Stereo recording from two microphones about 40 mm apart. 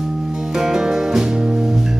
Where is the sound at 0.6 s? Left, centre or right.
Centre.